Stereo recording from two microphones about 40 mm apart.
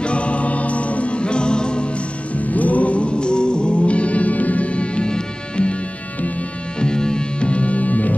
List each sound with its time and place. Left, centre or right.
0.0 s music: left
2.5 s music: left
6.8 s music: centre; by 8.1 s left